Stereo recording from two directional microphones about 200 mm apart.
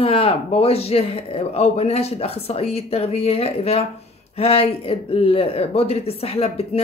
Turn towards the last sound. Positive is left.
turn(degrees=30)  # may be behind; listen again after turning